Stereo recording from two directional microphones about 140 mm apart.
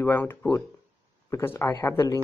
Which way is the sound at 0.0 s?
15° left (ahead or behind).